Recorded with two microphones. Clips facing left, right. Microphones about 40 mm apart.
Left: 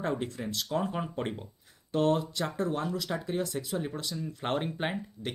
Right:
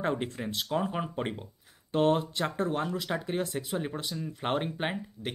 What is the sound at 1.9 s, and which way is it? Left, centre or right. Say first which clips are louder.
Speech: right 1 dB; right.